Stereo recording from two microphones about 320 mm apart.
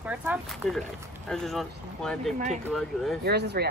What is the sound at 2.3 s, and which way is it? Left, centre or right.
Speech, right.